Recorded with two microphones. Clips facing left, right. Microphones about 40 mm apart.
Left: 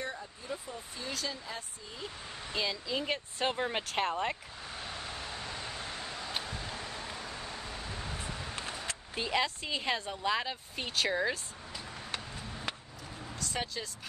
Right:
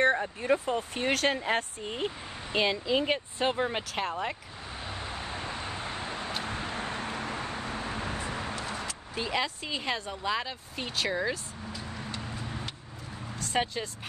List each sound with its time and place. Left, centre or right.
0.0 s speech: right
2.5 s speech: right
3.3 s speech: centre
4.8 s vehicle: centre; by 8.5 s right
8.5 s a sound: right
9.1 s speech: centre
13.4 s speech: right